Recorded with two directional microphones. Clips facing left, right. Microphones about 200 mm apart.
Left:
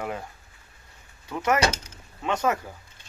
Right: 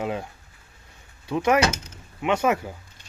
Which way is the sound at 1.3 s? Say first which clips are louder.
Right 3 dB; 15° right (ahead or behind).